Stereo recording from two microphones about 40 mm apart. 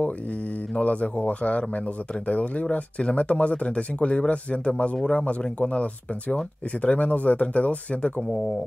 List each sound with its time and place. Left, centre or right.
0.7 s speech: left